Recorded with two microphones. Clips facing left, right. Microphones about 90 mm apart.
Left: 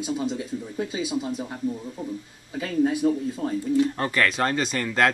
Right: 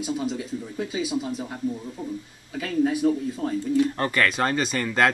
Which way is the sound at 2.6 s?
25° left (ahead or behind).